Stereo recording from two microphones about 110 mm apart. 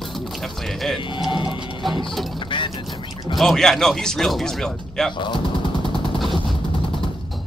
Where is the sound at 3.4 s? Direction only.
5° left (ahead or behind).